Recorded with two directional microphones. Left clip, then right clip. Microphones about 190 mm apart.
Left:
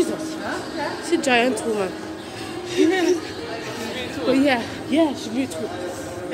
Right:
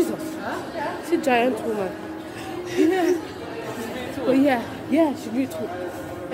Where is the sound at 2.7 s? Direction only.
15° right (ahead or behind).